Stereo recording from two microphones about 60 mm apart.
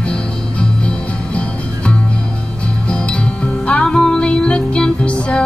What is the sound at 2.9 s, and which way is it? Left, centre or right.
Music, centre.